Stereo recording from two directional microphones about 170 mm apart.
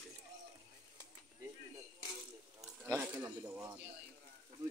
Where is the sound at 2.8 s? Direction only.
15° right (ahead or behind).